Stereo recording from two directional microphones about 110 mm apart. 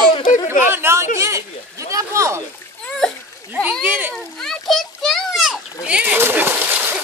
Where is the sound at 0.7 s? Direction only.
20° right (ahead or behind).